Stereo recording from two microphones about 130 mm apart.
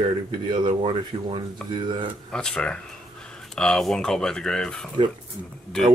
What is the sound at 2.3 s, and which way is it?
Speech, 5° left (ahead or behind).